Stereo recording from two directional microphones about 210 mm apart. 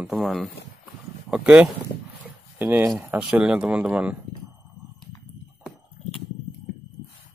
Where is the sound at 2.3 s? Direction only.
10° right (ahead or behind).